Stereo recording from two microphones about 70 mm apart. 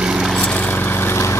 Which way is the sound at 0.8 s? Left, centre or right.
Left.